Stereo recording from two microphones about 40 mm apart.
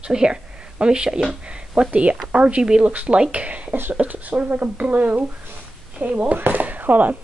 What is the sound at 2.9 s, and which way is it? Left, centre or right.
Speech, right.